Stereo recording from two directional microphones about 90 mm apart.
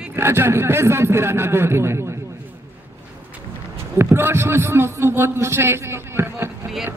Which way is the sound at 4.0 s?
25° right (ahead or behind).